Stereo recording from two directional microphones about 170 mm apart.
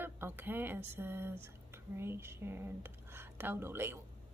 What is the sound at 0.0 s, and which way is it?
Speech, 10° right (ahead or behind).